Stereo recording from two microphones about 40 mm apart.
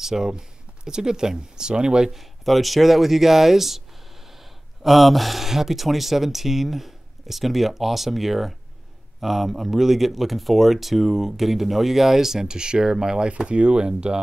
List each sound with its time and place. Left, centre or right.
0.0 s speech: centre
2.0 s speech: centre; by 14.2 s right